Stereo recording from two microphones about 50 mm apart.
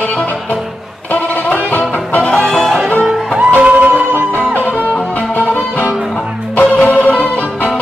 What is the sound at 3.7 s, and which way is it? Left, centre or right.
Music, right.